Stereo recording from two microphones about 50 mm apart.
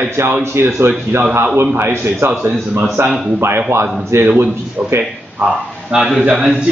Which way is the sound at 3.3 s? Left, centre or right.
Right.